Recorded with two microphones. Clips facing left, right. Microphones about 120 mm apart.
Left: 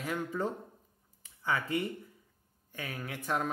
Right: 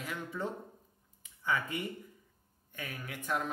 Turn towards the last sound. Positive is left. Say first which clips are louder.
# left 2 dB
turn(degrees=35)  # may be behind; listen again after turning